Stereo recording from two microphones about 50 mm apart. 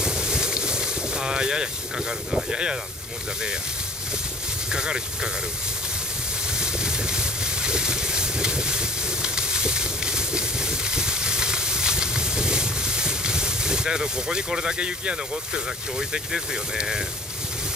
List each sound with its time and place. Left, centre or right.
0.0 s boat: centre
4.7 s speech: centre
6.6 s a sound: centre